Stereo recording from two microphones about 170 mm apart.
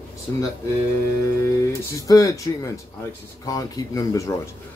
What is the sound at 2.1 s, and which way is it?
Speech, 20° left (ahead or behind).